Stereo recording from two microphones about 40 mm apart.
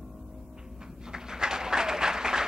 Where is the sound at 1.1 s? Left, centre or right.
Centre.